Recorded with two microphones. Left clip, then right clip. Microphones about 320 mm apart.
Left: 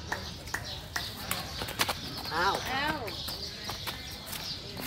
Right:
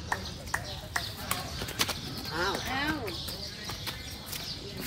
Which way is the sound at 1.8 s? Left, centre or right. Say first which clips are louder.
Left 1 dB; centre.